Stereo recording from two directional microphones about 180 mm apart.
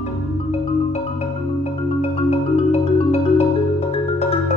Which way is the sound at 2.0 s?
35° left (ahead or behind).